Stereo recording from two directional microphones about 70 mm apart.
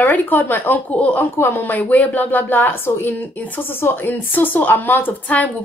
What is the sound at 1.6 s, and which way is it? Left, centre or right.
Speech, left.